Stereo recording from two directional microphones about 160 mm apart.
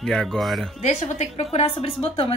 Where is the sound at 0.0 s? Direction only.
5° left (ahead or behind).